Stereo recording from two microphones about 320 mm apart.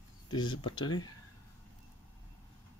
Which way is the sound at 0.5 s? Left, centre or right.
Centre.